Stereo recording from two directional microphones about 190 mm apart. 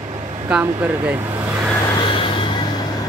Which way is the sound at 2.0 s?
25° left (ahead or behind).